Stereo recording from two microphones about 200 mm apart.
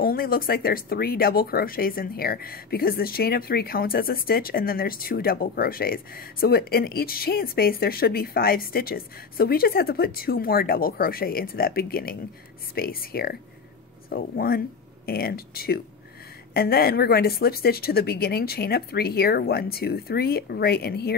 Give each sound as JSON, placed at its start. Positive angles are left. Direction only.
{"t": 0.0, "sound": "speech", "side_deg": 45}